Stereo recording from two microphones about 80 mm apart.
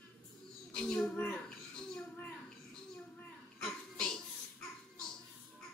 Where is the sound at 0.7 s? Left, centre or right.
Centre.